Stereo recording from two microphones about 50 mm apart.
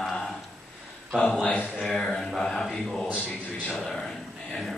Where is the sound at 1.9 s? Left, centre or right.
Centre.